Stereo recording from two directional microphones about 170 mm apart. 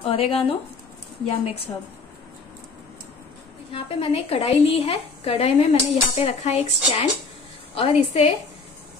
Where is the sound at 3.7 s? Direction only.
35° left (ahead or behind).